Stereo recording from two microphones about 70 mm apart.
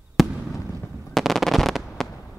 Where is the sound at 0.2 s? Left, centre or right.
Centre.